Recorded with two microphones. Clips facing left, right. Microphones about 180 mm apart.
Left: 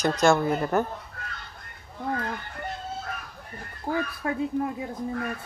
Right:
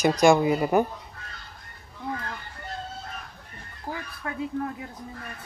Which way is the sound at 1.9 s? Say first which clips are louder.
Left 4 dB; 55° left (ahead or behind).